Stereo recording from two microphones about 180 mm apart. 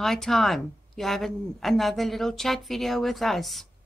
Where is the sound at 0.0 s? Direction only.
Centre (ahead or behind).